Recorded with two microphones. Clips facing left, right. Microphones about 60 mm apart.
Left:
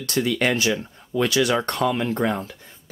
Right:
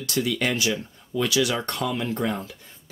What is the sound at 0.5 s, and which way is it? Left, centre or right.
Speech, left.